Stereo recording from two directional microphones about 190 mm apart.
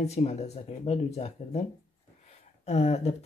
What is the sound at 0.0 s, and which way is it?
Speech, 35° left (ahead or behind).